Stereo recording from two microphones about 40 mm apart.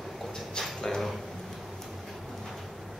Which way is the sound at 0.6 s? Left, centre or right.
Centre.